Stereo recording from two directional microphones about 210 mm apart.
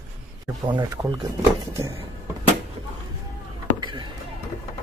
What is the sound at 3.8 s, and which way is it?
Music, 20° right (ahead or behind).